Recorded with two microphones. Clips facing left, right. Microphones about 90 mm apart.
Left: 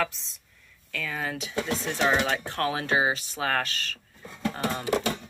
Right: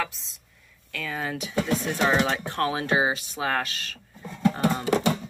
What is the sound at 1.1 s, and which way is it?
Speech, 15° right (ahead or behind).